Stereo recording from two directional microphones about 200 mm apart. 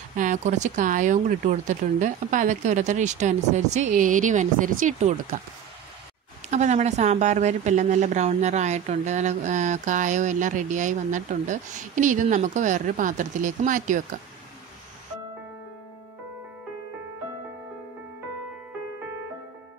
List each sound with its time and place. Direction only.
0.1 s a woman's voice: 40° right (ahead or behind)
6.5 s a woman's voice: 35° right (ahead or behind)